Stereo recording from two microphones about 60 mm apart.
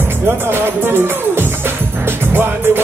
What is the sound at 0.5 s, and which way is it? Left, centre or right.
Music, right.